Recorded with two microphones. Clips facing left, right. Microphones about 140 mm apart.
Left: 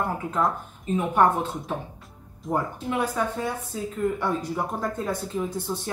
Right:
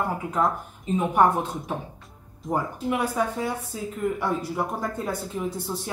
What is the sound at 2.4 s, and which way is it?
Speech, 10° right (ahead or behind).